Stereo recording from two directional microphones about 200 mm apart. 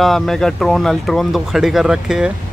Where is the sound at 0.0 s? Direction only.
Centre (ahead or behind).